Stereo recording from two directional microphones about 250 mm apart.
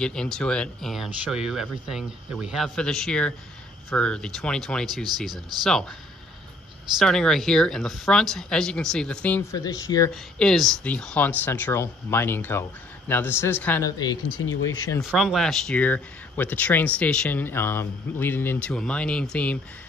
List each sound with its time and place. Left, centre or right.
0.0 s speech: centre
7.0 s speech: centre
10.1 s speech: centre
14.3 s speech: left
15.0 s speech: centre